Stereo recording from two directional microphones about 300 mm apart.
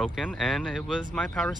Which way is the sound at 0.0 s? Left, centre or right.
Centre.